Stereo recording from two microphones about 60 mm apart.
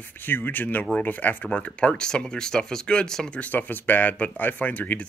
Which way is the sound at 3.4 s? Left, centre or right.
Left.